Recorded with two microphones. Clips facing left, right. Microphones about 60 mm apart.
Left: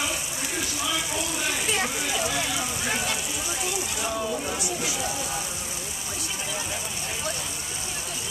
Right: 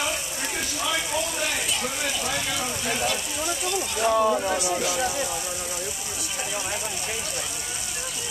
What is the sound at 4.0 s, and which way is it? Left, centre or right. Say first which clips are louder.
Speech: right 10 dB; right.